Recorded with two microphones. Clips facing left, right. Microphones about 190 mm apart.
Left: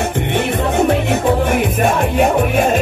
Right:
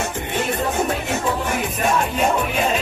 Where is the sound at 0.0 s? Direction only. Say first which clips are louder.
Left 6 dB; 65° left (ahead or behind).